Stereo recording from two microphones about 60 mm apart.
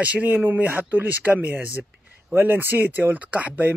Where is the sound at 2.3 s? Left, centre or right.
Right.